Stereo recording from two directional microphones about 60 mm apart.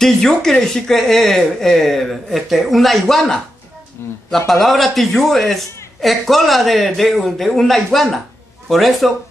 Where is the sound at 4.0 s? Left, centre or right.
Left.